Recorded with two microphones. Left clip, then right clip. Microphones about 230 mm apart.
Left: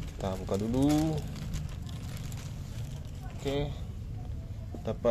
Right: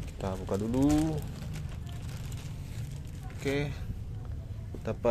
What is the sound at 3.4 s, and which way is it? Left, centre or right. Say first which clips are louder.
Speech: right 1 dB; centre.